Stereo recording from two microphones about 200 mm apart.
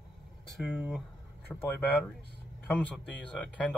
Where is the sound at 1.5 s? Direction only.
10° left (ahead or behind).